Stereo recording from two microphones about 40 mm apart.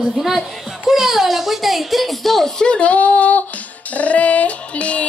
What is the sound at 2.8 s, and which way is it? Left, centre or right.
Music, left.